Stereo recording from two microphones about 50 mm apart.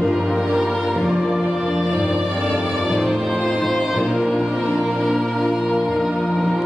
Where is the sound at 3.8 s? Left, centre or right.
Centre.